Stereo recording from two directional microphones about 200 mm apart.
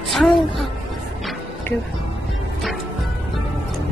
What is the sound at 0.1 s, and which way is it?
Speech, centre (ahead or behind).